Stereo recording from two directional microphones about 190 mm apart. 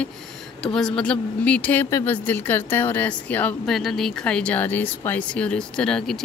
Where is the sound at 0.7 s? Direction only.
5° left (ahead or behind).